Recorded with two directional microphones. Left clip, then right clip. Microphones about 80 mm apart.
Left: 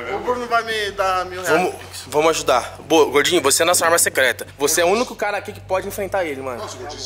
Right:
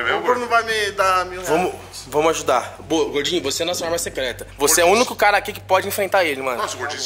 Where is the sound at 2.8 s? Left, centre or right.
Left.